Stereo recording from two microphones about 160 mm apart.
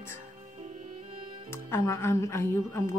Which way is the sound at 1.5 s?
15° left (ahead or behind).